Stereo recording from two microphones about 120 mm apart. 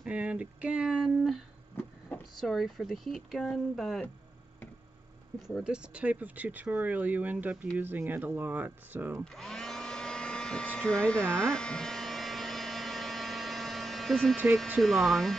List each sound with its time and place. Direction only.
0.0 s speech: 10° right (ahead or behind)
1.8 s a sound: 15° left (ahead or behind)
2.3 s speech: centre (ahead or behind)
5.6 s speech: 10° right (ahead or behind)
9.2 s hair dryer: 5° left (ahead or behind)
11.5 s a sound: 5° left (ahead or behind)
14.8 s speech: centre (ahead or behind)